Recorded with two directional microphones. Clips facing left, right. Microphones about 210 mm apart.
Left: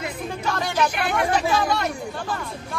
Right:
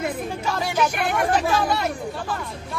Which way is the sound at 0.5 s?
5° right (ahead or behind).